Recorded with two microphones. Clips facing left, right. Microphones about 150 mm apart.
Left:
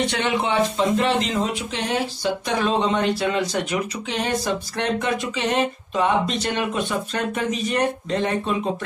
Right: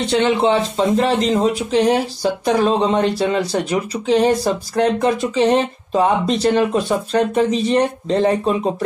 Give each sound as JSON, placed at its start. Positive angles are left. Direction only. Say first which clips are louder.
{"t": 0.1, "sound": "speech", "louder": "right 7 dB", "side_deg": -30}